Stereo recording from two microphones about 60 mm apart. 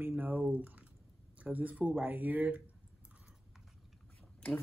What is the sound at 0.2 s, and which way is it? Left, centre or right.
Speech, right.